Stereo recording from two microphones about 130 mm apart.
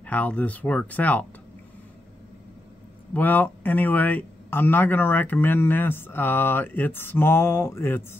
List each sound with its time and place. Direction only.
0.0 s speech: 10° left (ahead or behind)
3.1 s speech: 15° left (ahead or behind)